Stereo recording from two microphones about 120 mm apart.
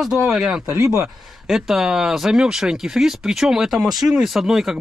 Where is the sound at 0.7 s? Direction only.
25° right (ahead or behind).